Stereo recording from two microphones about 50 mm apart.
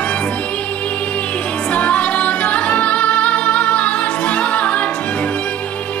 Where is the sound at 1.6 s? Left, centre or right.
Left.